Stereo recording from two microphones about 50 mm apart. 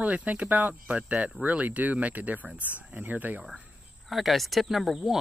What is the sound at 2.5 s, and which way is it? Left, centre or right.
Speech, left.